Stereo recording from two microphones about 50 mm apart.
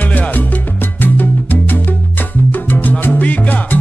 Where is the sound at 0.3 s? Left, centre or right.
Left.